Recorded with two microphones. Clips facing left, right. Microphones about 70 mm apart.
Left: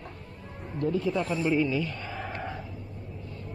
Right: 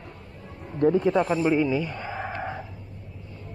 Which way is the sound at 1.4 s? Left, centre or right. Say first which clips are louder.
Right 3 dB; centre.